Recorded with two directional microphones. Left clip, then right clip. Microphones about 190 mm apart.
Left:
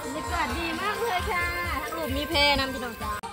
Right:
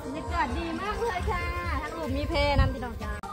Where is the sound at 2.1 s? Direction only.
40° left (ahead or behind).